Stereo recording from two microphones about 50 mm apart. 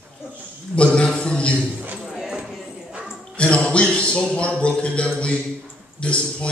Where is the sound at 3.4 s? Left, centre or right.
Left.